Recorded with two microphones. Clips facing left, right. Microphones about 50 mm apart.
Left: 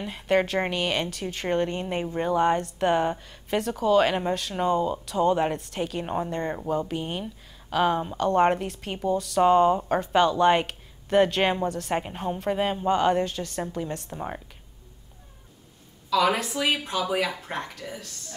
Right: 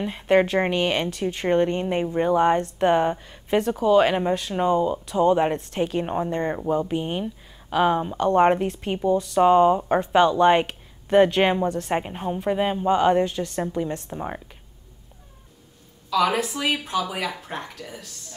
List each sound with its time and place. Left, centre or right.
0.0 s speech: right
4.6 s a woman's voice: centre
5.0 s speech: right
6.0 s a woman's voice: centre
9.9 s speech: right
12.0 s a woman's voice: centre
16.1 s speech: centre